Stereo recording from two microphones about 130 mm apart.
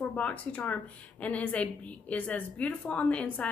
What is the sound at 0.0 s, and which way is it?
A woman's voice, 10° left (ahead or behind).